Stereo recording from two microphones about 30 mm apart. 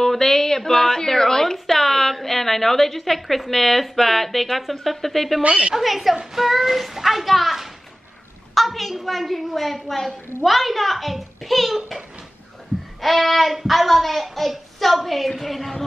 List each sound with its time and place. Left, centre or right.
0.0 s a woman's voice: centre
5.4 s a woman's voice: right
5.8 s a woman's voice: centre
13.0 s a woman's voice: centre